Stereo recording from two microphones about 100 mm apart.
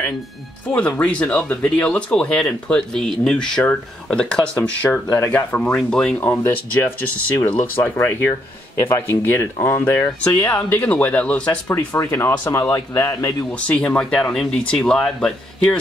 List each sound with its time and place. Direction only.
0.7 s speech: 10° left (ahead or behind)
6.1 s speech: 25° left (ahead or behind)
11.6 s speech: 30° left (ahead or behind)
13.5 s speech: 15° left (ahead or behind)